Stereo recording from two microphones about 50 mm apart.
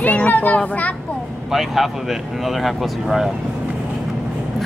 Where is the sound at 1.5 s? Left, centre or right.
Centre.